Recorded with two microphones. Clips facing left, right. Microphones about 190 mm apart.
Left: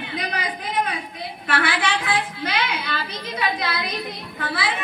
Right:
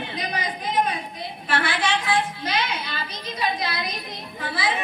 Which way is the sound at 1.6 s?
55° left (ahead or behind).